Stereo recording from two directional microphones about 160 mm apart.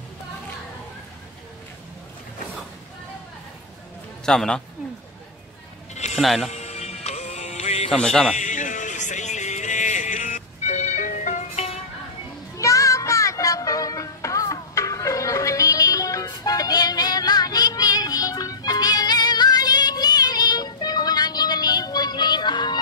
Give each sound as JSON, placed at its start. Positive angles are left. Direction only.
{"t": 4.3, "sound": "a man's voice", "side_deg": 5}
{"t": 6.1, "sound": "speech", "side_deg": 0}
{"t": 6.5, "sound": "music", "side_deg": 45}
{"t": 7.9, "sound": "a man's voice", "side_deg": 5}
{"t": 8.4, "sound": "music", "side_deg": 50}
{"t": 12.5, "sound": "music", "side_deg": 20}